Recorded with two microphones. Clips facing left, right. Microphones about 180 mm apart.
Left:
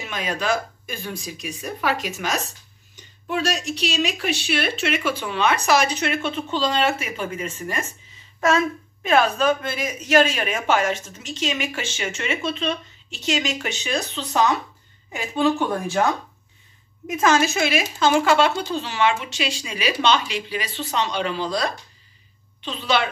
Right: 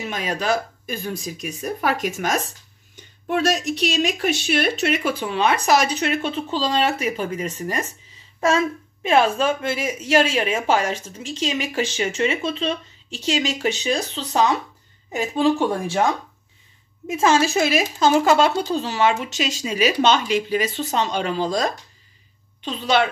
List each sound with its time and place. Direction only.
0.0 s a woman's voice: 40° right (ahead or behind)
17.1 s a woman's voice: 30° right (ahead or behind); by 23.0 s 45° right (ahead or behind)